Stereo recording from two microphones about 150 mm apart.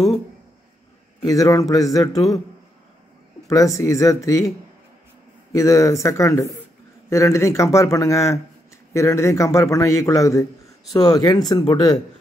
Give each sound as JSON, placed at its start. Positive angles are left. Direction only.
{"t": 1.2, "sound": "a man's voice", "side_deg": 25}
{"t": 3.4, "sound": "a man's voice", "side_deg": 20}
{"t": 5.5, "sound": "a man's voice", "side_deg": 20}